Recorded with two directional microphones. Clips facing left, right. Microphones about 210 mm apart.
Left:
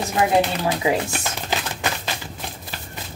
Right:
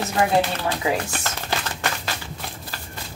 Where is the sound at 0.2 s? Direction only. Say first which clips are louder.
Left 2 dB; 20° left (ahead or behind).